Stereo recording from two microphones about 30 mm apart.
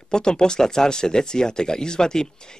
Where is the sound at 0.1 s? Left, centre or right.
Left.